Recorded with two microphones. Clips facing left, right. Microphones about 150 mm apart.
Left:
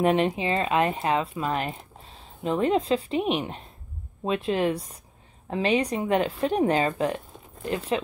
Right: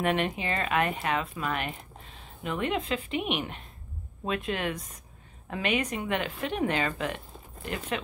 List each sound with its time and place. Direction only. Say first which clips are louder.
0.0 s speech: left 6 dB; 30° left (ahead or behind)